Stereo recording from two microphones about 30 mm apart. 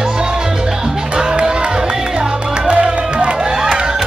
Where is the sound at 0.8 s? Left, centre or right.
Right.